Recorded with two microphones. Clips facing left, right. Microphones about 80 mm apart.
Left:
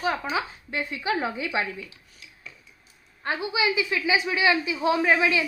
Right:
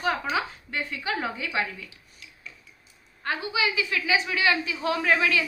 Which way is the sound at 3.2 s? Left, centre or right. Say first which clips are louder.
Left 2 dB; centre.